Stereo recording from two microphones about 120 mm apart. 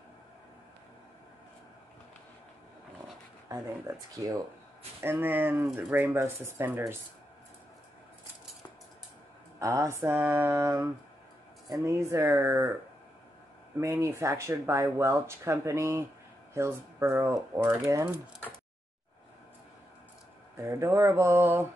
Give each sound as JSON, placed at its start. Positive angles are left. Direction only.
{"t": 3.4, "sound": "speech", "side_deg": -25}
{"t": 9.6, "sound": "speech", "side_deg": -25}
{"t": 13.7, "sound": "speech", "side_deg": -25}
{"t": 20.5, "sound": "speech", "side_deg": -25}